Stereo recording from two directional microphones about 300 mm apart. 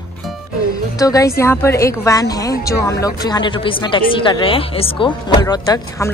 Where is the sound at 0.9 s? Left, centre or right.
Centre.